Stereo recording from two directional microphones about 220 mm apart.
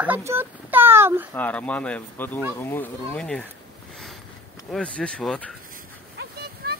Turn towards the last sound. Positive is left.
turn(degrees=-45)  # may be behind; listen again after turning